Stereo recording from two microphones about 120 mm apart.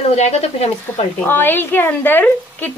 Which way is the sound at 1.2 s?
15° left (ahead or behind).